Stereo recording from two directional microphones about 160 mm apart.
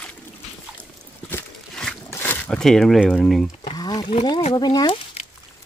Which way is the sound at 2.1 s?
15° left (ahead or behind).